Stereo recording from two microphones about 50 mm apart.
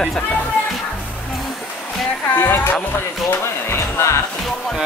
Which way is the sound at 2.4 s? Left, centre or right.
Left.